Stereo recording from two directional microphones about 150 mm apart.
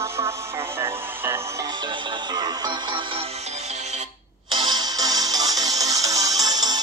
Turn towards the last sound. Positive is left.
turn(degrees=-25)  # may be behind; listen again after turning